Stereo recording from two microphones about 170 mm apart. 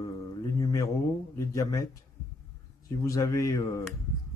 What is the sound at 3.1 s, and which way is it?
Speech, 20° left (ahead or behind).